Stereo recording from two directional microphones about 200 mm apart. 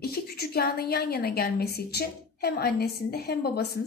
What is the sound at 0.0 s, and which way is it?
A woman's voice, 50° left (ahead or behind).